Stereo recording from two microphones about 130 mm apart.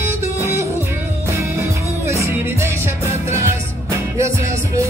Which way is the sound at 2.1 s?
20° right (ahead or behind).